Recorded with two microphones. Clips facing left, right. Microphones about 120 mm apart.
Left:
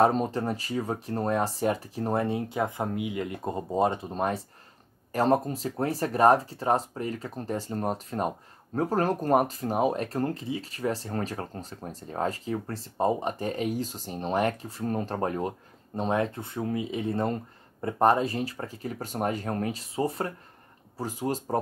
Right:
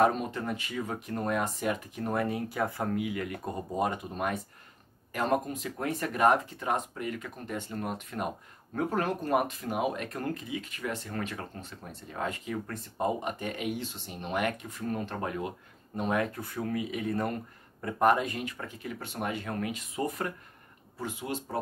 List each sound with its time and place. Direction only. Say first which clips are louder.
0.0 s speech: left 3 dB; 35° left (ahead or behind)